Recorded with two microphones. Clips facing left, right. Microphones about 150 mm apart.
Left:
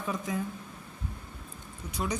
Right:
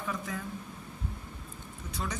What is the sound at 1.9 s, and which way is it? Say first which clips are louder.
Speech: left 4 dB; 15° left (ahead or behind).